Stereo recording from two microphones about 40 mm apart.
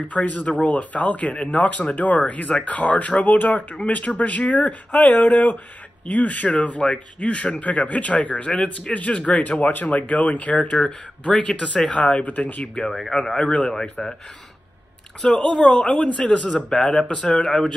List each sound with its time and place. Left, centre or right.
0.1 s speech: left
1.3 s a man's voice: left
9.4 s speech: left
13.1 s speech: centre
15.3 s a man's voice: centre
16.6 s speech: centre
17.1 s a man's voice: left